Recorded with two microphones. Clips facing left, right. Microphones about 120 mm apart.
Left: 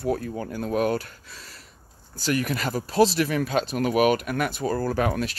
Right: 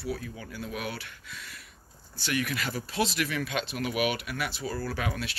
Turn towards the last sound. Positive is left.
turn(degrees=45)  # may be behind; listen again after turning